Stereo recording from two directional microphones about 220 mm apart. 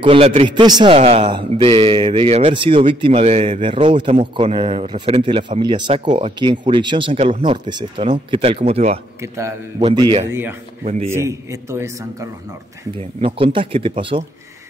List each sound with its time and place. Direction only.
0.0 s a man's voice: 25° right (ahead or behind)
9.2 s a man's voice: 15° right (ahead or behind)
10.8 s speech: 35° right (ahead or behind)
11.1 s a man's voice: 10° right (ahead or behind)
13.2 s a man's voice: 25° right (ahead or behind)